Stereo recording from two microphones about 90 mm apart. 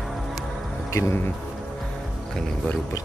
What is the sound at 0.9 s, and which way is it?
Speech, 30° left (ahead or behind).